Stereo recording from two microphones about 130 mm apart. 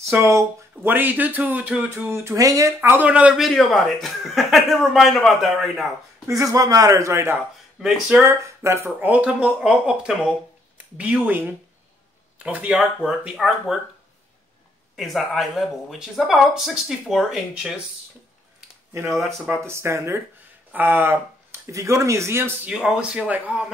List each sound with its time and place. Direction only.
0.1 s speech: 20° right (ahead or behind)
2.1 s speech: 25° right (ahead or behind); by 5.9 s centre (ahead or behind)
6.2 s speech: 25° right (ahead or behind)
7.8 s speech: 5° right (ahead or behind)
8.3 s speech: 20° right (ahead or behind); by 13.7 s 5° right (ahead or behind)
15.0 s speech: centre (ahead or behind)
19.4 s speech: 10° right (ahead or behind)
19.7 s speech: 20° right (ahead or behind)
22.7 s speech: 5° right (ahead or behind)